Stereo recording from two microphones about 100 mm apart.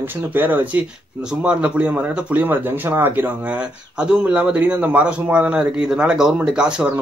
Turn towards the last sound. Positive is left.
turn(degrees=-10)  # may be behind; listen again after turning